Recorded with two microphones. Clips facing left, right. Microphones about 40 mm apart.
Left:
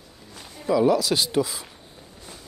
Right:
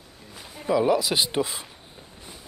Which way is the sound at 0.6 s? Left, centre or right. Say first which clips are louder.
Left 2 dB; right.